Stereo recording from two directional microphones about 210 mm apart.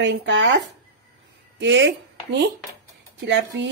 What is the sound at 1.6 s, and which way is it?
Speech, 60° right (ahead or behind).